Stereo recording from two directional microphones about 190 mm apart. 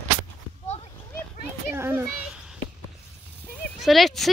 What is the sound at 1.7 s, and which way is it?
Children playing, 10° right (ahead or behind).